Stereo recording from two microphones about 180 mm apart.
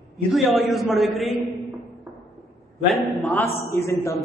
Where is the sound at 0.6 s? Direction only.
Centre (ahead or behind).